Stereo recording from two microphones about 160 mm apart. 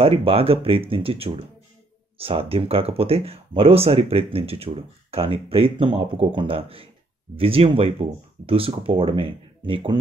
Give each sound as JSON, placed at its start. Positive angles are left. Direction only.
{"t": 0.0, "sound": "speech", "side_deg": -35}